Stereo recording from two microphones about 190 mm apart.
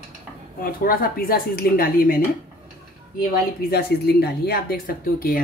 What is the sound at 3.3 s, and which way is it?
A woman's voice, 55° left (ahead or behind).